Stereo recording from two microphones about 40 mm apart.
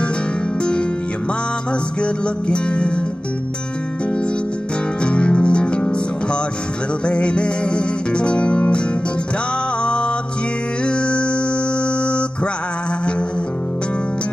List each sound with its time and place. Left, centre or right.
2.0 s music: left
5.0 s music: left
7.1 s music: left
9.8 s music: left